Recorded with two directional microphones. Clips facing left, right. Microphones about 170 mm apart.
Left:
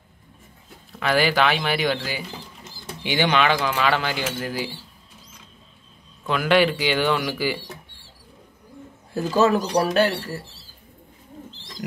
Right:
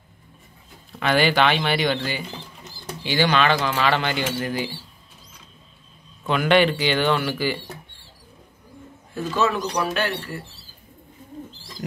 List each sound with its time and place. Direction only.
0.9 s speech: 5° left (ahead or behind)
2.6 s bird: 15° left (ahead or behind)
3.6 s speech: 10° left (ahead or behind)
6.2 s speech: centre (ahead or behind)
9.1 s speech: 40° left (ahead or behind)